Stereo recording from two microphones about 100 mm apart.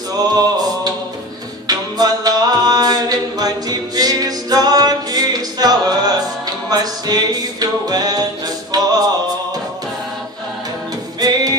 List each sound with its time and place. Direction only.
0.3 s a sound: 40° right (ahead or behind)
1.7 s music: 40° right (ahead or behind)
11.1 s music: 40° right (ahead or behind)